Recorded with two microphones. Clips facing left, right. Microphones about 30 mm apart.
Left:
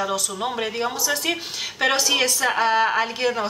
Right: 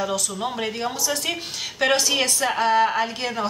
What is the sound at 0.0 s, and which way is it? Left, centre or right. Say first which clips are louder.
Speech: left 1 dB; centre.